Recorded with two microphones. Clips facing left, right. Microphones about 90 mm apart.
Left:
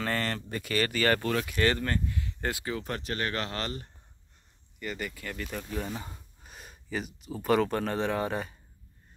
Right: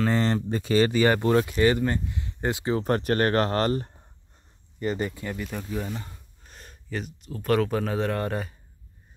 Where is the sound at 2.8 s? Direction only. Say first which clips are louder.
Right 10 dB; 45° right (ahead or behind).